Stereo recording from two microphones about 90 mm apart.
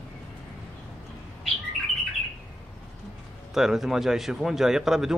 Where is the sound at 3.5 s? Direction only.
5° right (ahead or behind).